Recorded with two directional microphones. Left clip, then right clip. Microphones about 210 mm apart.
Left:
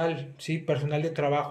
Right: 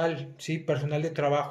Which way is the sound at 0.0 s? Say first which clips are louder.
Even; centre (ahead or behind).